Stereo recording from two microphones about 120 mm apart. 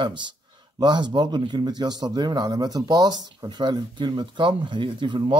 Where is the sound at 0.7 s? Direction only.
35° right (ahead or behind).